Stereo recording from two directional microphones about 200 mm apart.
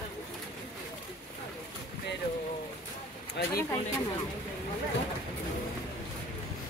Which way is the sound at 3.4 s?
55° left (ahead or behind).